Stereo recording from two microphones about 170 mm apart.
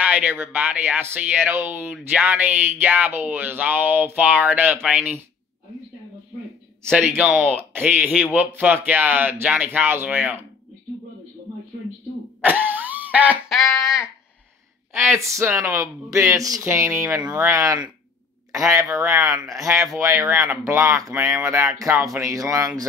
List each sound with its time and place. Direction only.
0.0 s speech: 10° right (ahead or behind)
6.9 s speech: 10° right (ahead or behind)
12.4 s a sound: 10° right (ahead or behind)
15.0 s speech: 15° right (ahead or behind)